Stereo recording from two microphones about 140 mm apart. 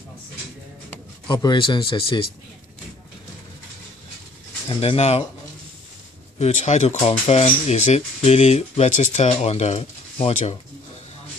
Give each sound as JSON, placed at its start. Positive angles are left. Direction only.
{"t": 1.3, "sound": "speech", "side_deg": 35}
{"t": 4.6, "sound": "speech", "side_deg": 45}
{"t": 6.3, "sound": "speech", "side_deg": 50}